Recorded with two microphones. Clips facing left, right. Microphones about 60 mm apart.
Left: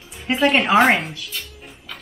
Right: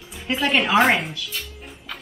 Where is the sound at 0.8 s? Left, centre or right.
Centre.